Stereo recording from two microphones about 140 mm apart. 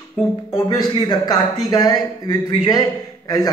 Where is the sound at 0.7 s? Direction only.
30° left (ahead or behind).